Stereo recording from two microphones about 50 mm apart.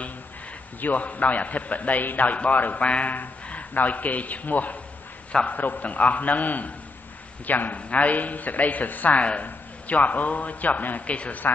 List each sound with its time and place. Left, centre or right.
0.7 s a man's voice: left